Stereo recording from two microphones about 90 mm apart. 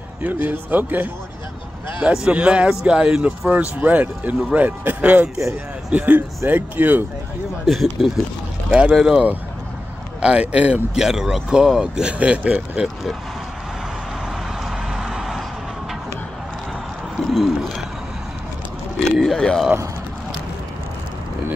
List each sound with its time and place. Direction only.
0.2 s a man's voice: 20° right (ahead or behind)
7.6 s speech: centre (ahead or behind)
14.6 s vehicle: 5° right (ahead or behind)
17.3 s speech: centre (ahead or behind)
19.1 s speech: 5° left (ahead or behind)